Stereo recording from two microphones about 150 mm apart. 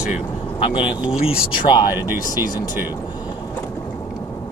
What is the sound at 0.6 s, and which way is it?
Speech, 35° left (ahead or behind).